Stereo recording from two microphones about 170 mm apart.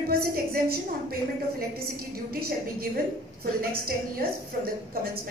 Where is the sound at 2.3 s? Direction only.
60° right (ahead or behind).